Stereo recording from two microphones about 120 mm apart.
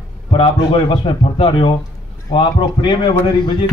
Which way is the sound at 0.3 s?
50° left (ahead or behind).